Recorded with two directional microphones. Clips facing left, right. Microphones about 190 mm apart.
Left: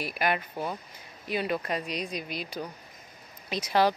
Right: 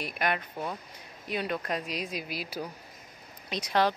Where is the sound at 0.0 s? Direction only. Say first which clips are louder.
Left 2 dB; 5° left (ahead or behind).